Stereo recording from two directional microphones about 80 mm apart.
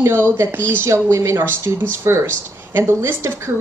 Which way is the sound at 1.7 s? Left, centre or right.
Right.